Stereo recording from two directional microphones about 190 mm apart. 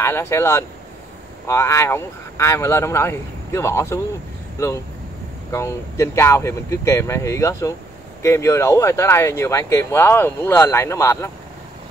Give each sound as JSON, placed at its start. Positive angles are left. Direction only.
{"t": 0.0, "sound": "speech", "side_deg": 15}